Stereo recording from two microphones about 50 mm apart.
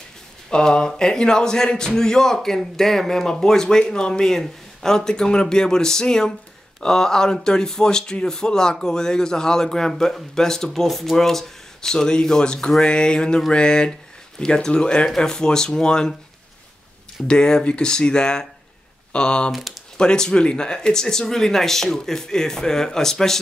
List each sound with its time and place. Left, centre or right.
0.5 s a man's voice: centre
17.3 s a man's voice: centre
19.5 s speech: centre
20.0 s a man's voice: centre